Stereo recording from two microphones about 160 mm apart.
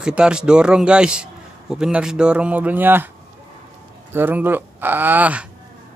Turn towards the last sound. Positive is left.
turn(degrees=-10)  # may be behind; listen again after turning